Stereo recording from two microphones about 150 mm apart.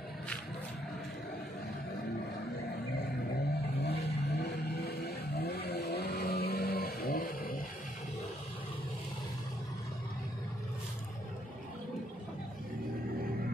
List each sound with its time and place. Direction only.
3.8 s vehicle: 90° left